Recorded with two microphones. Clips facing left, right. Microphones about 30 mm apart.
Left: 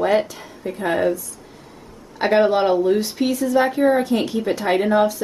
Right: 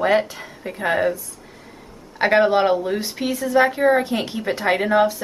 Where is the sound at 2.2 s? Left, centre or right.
Centre.